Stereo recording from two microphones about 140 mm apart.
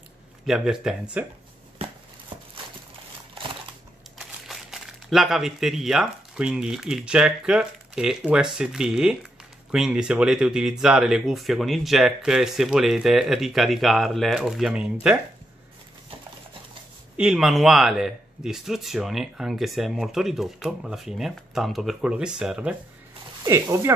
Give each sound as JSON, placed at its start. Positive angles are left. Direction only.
{"t": 0.5, "sound": "speech", "side_deg": -5}
{"t": 1.8, "sound": "a sound", "side_deg": -40}
{"t": 4.2, "sound": "speech", "side_deg": -5}
{"t": 17.2, "sound": "speech", "side_deg": -5}
{"t": 23.4, "sound": "speech", "side_deg": -20}